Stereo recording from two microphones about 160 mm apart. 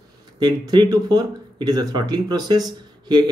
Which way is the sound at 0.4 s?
25° right (ahead or behind).